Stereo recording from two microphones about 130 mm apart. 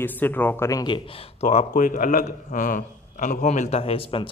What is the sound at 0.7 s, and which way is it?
Speech, 30° left (ahead or behind).